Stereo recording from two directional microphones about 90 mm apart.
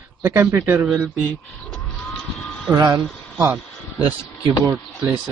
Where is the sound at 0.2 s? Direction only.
30° right (ahead or behind).